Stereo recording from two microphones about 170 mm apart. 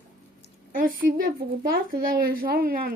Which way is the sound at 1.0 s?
65° right (ahead or behind).